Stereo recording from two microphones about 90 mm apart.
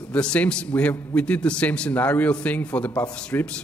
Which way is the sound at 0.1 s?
15° left (ahead or behind).